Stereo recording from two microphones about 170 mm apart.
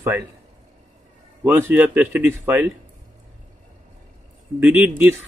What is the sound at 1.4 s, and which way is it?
Speech, 10° right (ahead or behind).